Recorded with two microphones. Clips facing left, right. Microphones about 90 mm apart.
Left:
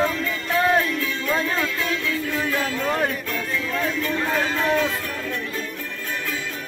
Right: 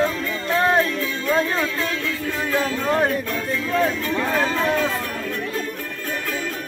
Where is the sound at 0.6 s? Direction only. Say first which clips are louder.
Right 1 dB; 30° right (ahead or behind).